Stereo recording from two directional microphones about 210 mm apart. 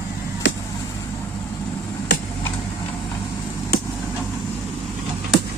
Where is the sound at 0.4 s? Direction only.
60° left (ahead or behind).